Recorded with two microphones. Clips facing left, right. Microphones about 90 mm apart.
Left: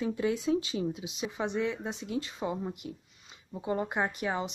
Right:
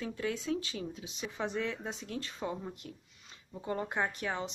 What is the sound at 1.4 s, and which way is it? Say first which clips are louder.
Speech: left 4 dB; 5° left (ahead or behind).